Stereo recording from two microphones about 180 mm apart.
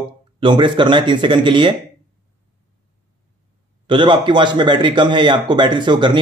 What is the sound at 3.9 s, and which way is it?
Speech, 25° right (ahead or behind).